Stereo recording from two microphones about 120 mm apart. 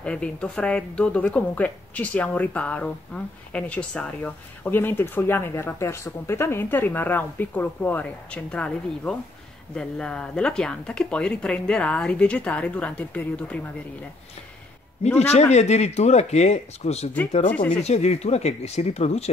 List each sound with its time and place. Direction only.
0.0 s speech: 10° left (ahead or behind)
15.1 s speech: 60° left (ahead or behind)